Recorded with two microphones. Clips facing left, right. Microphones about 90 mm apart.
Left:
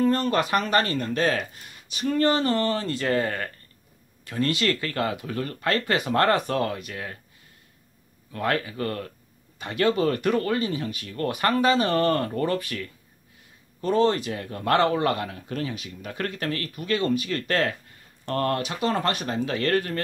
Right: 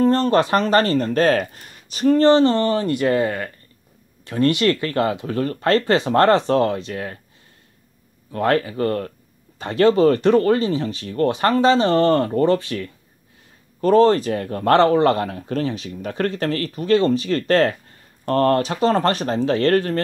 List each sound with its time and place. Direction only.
0.0 s speech: 30° right (ahead or behind)
5.2 s speech: 35° right (ahead or behind)
8.3 s speech: 35° right (ahead or behind)
13.7 s speech: 40° right (ahead or behind)